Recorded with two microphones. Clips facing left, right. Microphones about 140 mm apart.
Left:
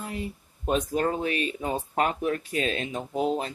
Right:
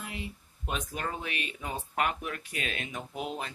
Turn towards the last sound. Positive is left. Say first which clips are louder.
# left 9 dB
turn(degrees=30)  # may be behind; listen again after turning